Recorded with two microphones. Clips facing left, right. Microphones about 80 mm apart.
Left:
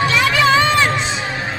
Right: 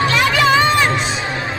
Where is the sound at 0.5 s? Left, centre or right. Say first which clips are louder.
Even; right.